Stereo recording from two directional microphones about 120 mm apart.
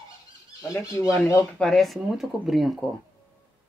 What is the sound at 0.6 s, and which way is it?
Speech, 25° left (ahead or behind).